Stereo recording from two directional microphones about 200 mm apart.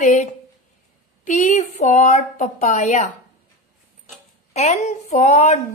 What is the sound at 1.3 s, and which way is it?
Speech, 35° left (ahead or behind).